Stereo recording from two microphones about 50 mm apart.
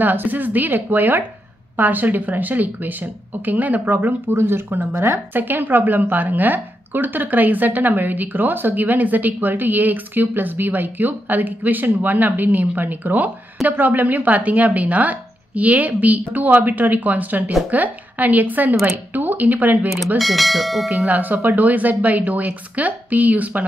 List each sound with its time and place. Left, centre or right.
0.0 s a woman's voice: right
4.3 s a woman's voice: right
5.4 s a woman's voice: right
20.2 s speech: centre
20.9 s a woman's voice: right